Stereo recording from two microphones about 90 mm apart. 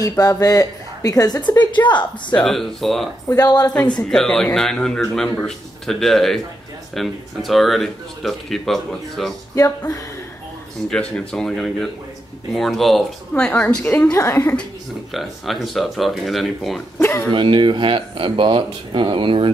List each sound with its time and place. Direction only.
0.0 s speech: 40° left (ahead or behind); by 2.3 s 60° left (ahead or behind)
2.3 s speech: 5° left (ahead or behind)
3.3 s a woman's voice: 45° left (ahead or behind)
3.7 s speech: 10° left (ahead or behind)
10.9 s speech: 10° left (ahead or behind)
13.3 s speech: 15° left (ahead or behind)
14.1 s speech: 40° left (ahead or behind)
15.1 s speech: centre (ahead or behind)
17.3 s speech: 65° right (ahead or behind)